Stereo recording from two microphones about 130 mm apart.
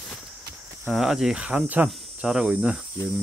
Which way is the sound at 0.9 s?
Centre (ahead or behind).